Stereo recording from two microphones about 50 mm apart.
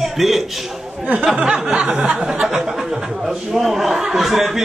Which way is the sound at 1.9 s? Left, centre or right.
Right.